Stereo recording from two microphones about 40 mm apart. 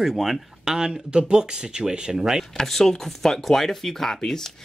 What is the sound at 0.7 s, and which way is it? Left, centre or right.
Speech, centre.